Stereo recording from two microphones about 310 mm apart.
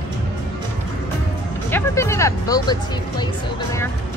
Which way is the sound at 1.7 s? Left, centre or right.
Centre.